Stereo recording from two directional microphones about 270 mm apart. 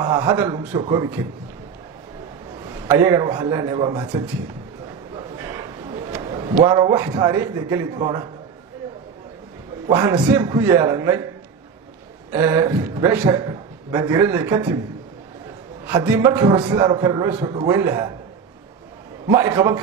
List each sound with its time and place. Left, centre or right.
0.0 s a man's voice: centre
2.9 s a man's voice: centre
6.1 s a sound: centre
6.6 s a man's voice: centre
9.8 s a man's voice: centre
12.3 s a man's voice: centre
16.1 s a man's voice: centre
19.3 s a man's voice: centre